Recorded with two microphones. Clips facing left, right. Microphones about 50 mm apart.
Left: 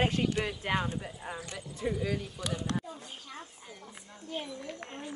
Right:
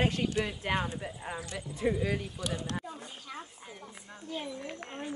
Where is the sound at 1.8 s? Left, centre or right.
Centre.